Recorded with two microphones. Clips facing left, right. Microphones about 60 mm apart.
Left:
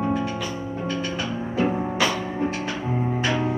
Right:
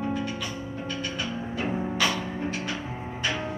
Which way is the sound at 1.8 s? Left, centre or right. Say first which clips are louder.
Left 3 dB; left.